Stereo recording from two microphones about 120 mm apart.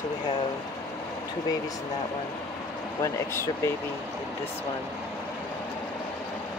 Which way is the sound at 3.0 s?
25° left (ahead or behind).